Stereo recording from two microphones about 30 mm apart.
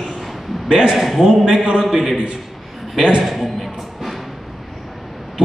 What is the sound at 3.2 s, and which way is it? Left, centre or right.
Speech, centre.